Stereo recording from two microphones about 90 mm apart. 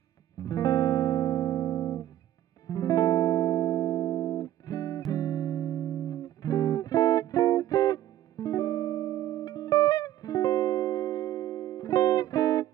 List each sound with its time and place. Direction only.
0.4 s music: 45° left (ahead or behind)